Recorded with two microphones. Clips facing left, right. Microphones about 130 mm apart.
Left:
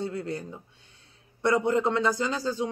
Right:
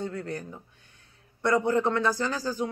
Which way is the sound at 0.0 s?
20° left (ahead or behind).